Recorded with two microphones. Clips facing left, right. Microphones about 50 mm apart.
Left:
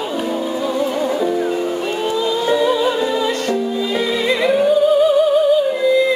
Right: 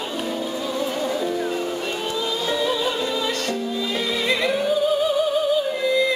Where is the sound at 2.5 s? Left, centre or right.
Centre.